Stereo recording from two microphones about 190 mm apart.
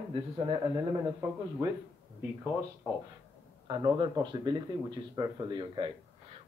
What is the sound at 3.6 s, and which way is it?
Speech, 25° right (ahead or behind).